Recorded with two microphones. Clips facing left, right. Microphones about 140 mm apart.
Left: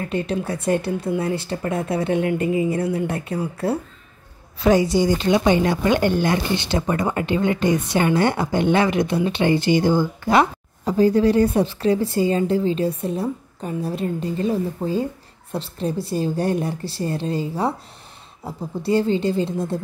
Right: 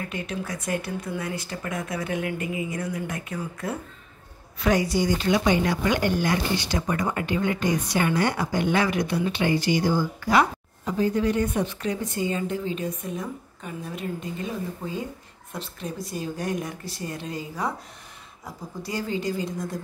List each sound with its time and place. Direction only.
0.0 s speech: 30° left (ahead or behind)